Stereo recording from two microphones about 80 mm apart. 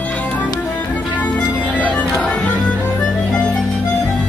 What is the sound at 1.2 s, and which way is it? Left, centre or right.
Music, centre.